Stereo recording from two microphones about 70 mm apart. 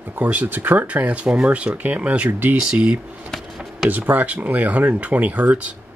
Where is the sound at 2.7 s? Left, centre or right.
Centre.